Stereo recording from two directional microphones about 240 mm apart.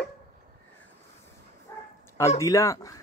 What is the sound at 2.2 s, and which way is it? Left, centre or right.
Speech, centre.